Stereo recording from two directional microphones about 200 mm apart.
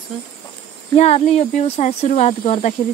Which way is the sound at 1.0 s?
30° left (ahead or behind).